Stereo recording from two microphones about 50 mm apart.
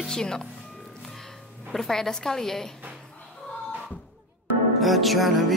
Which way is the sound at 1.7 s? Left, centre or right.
Centre.